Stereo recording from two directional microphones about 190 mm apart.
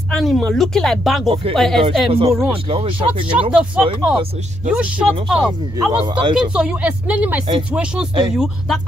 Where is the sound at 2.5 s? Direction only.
30° right (ahead or behind).